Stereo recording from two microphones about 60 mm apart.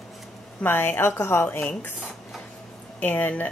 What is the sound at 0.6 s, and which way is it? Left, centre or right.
Speech, left.